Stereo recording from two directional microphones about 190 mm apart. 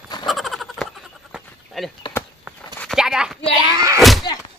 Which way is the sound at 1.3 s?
Centre (ahead or behind).